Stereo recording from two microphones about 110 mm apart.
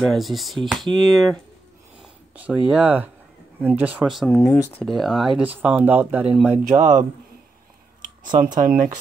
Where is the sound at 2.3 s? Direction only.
10° right (ahead or behind).